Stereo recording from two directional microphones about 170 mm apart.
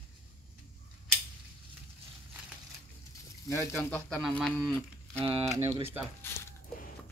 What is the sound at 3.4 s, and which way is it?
Speech, 15° left (ahead or behind).